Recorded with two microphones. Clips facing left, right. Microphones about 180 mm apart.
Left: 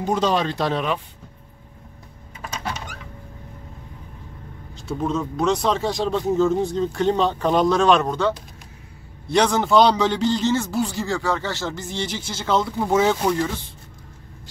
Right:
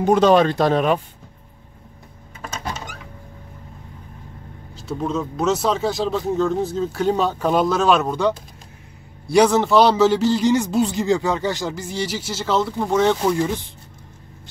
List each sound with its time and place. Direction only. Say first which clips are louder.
0.0 s speech: right 7 dB; 55° right (ahead or behind)
4.7 s a man's voice: even; centre (ahead or behind)
13.3 s a man's voice: right 2 dB; 15° right (ahead or behind)